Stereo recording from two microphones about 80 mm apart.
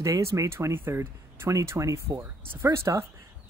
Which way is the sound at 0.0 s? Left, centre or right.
Right.